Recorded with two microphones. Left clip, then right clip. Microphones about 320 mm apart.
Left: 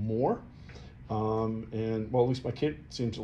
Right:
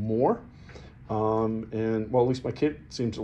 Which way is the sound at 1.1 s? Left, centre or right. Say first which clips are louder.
Right 5 dB; right.